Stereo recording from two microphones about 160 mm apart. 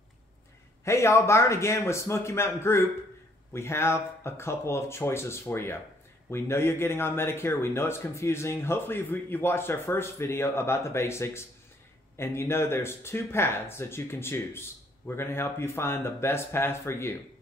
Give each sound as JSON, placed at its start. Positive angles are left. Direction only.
{"t": 0.8, "sound": "speech", "side_deg": 20}